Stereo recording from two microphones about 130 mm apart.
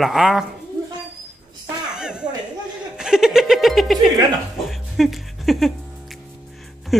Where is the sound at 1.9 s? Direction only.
5° right (ahead or behind).